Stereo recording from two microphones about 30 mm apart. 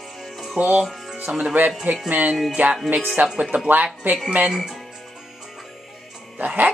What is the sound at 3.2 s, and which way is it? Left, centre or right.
Speech, right.